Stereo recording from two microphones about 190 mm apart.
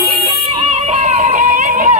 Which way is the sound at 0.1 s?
35° right (ahead or behind).